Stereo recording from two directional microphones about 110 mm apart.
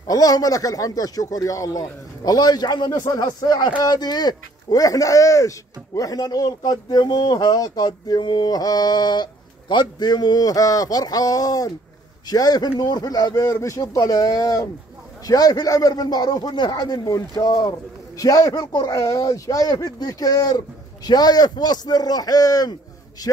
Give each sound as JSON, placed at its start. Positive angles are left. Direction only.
{"t": 0.1, "sound": "speech", "side_deg": 35}